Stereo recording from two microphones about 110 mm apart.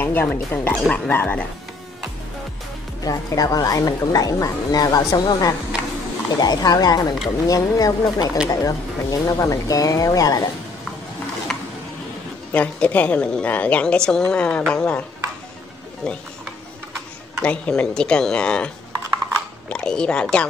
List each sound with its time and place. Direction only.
0.0 s a woman's voice: 15° left (ahead or behind)
3.0 s a woman's voice: 35° left (ahead or behind)
11.5 s a sound: 5° left (ahead or behind)
12.5 s a woman's voice: 15° left (ahead or behind)
16.9 s speech: 10° left (ahead or behind)
19.7 s a woman's voice: 10° left (ahead or behind)